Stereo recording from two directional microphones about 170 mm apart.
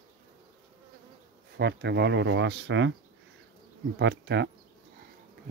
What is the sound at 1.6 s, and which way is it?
Speech, 85° right.